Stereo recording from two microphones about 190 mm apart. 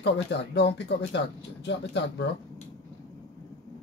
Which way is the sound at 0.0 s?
65° left (ahead or behind).